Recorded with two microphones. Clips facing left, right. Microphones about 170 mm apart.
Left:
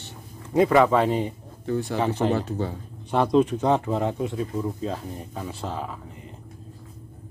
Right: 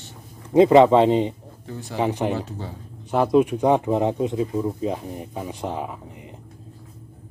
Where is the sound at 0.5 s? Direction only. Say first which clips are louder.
Right 5 dB; 25° right (ahead or behind).